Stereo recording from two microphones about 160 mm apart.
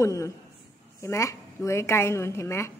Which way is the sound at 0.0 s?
20° left (ahead or behind).